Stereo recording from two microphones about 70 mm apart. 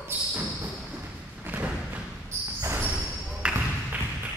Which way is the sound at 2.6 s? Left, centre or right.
Right.